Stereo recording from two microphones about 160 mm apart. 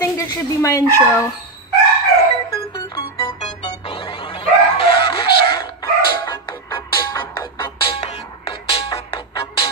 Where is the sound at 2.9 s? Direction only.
35° left (ahead or behind).